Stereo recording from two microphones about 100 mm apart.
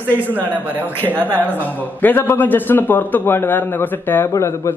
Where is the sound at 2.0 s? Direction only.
20° left (ahead or behind).